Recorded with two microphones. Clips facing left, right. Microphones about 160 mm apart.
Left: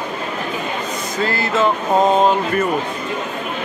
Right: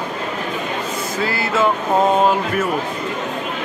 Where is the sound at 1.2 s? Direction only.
10° right (ahead or behind).